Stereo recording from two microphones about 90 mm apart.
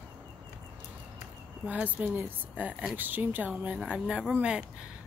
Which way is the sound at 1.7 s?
20° right (ahead or behind).